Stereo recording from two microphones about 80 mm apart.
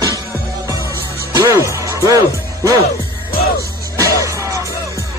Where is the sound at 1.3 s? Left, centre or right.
Right.